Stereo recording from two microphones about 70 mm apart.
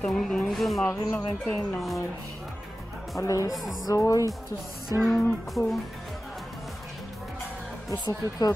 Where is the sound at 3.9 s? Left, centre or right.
Left.